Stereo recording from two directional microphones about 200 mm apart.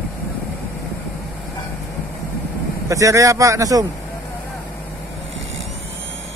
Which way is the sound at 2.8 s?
15° right (ahead or behind).